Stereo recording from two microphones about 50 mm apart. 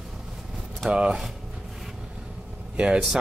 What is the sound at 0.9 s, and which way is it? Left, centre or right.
Speech, centre.